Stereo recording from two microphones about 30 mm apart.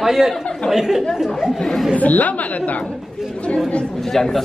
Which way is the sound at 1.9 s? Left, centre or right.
Left.